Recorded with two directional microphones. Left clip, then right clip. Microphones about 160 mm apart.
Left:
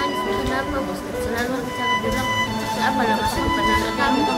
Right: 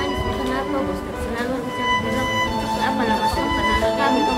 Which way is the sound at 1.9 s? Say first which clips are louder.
Right 1 dB; centre (ahead or behind).